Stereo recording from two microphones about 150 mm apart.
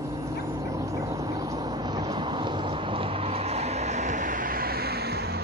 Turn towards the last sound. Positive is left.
turn(degrees=-90)